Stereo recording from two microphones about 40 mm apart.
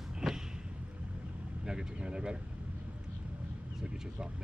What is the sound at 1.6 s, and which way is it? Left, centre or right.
Speech, right.